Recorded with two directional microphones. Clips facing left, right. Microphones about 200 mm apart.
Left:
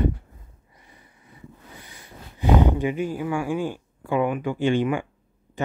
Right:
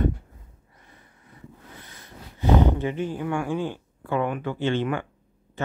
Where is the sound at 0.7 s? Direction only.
15° left (ahead or behind).